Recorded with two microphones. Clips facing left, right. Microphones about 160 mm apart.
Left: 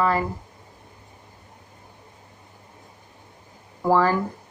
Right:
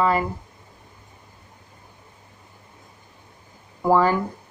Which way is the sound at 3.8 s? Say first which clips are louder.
Right 1 dB; 20° right (ahead or behind).